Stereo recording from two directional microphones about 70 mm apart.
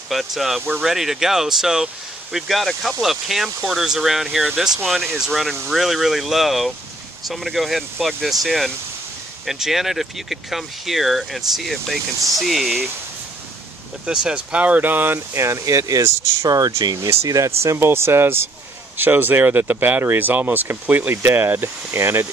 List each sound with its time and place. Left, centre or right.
0.1 s speech: centre
14.0 s speech: centre; by 17.1 s right
17.1 s speech: right